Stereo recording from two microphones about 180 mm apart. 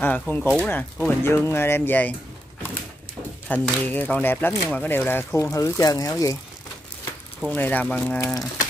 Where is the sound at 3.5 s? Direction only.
10° left (ahead or behind).